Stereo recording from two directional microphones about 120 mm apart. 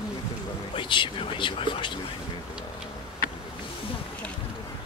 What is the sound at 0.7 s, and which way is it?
Speech, 45° left (ahead or behind).